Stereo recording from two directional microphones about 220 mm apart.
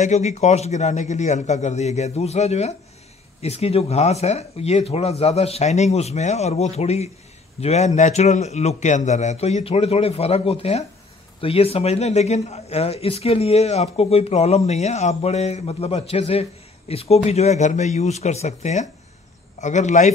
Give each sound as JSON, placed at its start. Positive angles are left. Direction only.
{"t": 0.0, "sound": "a man's voice", "side_deg": 30}